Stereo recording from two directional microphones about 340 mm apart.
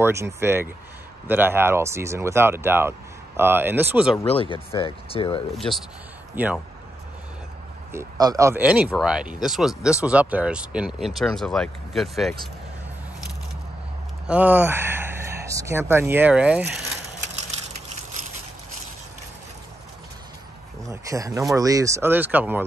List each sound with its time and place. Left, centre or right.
0.0 s speech: centre
4.2 s speech: centre
5.5 s speech: centre
7.9 s speech: centre
14.2 s speech: centre
20.9 s speech: centre